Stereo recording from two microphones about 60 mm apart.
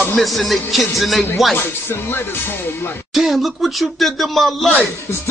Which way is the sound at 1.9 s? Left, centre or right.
Left.